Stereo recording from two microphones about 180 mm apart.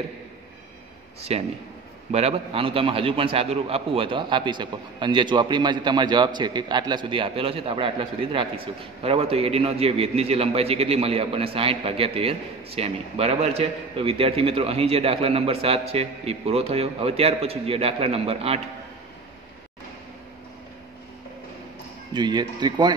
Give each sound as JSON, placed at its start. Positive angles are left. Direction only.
{"t": 1.3, "sound": "a man's voice", "side_deg": -35}
{"t": 22.1, "sound": "speech", "side_deg": -25}